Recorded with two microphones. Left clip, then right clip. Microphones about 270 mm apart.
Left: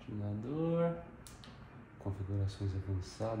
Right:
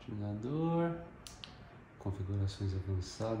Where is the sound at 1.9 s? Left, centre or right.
Right.